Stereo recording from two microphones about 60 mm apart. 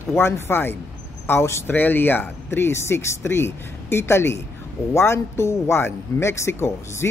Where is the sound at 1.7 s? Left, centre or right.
Left.